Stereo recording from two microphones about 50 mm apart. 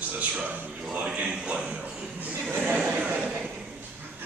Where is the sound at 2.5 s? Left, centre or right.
Right.